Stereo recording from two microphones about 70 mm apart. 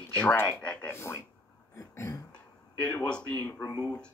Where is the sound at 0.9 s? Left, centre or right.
Left.